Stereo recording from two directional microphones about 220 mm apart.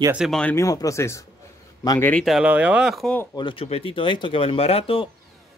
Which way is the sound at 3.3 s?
25° left (ahead or behind).